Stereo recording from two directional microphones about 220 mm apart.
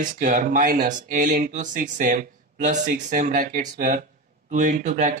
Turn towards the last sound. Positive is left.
turn(degrees=-35)  # may be behind; listen again after turning